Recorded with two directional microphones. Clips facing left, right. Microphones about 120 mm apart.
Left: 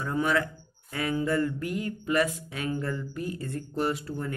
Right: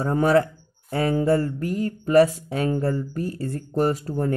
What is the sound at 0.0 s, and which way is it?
Speech, 40° right (ahead or behind).